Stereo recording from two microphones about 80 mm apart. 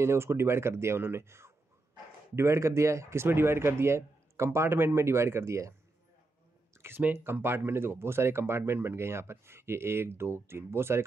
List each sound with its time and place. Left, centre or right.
0.0 s speech: right
7.0 s speech: right